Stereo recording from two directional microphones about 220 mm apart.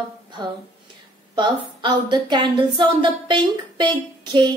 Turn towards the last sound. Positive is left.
turn(degrees=-20)  # may be behind; listen again after turning